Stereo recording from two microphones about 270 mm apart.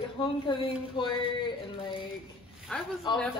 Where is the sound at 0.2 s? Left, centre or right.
Centre.